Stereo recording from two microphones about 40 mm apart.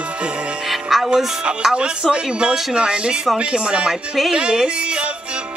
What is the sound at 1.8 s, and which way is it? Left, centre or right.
Speech, right.